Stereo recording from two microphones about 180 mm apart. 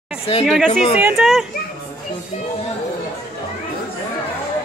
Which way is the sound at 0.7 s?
35° left (ahead or behind).